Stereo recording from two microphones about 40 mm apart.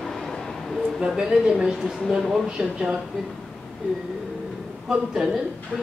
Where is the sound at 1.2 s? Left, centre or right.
Centre.